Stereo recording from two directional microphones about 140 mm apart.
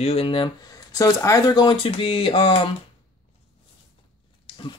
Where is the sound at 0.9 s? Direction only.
25° left (ahead or behind); by 2.7 s 40° left (ahead or behind).